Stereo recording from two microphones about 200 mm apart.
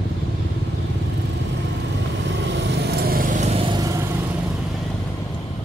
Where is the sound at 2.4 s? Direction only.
60° right (ahead or behind); by 4.3 s 15° right (ahead or behind).